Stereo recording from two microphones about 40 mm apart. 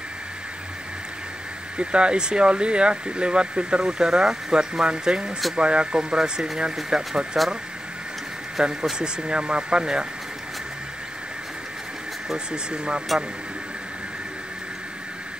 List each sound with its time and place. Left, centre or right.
1.8 s speech: right
3.8 s speech: centre
8.6 s speech: centre
12.7 s speech: right